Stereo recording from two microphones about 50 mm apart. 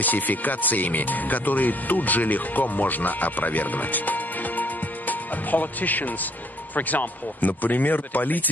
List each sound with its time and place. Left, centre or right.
0.0 s speech: left